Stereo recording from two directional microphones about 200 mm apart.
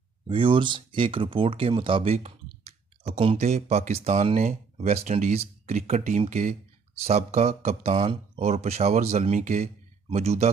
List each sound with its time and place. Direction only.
0.3 s speech: 25° right (ahead or behind)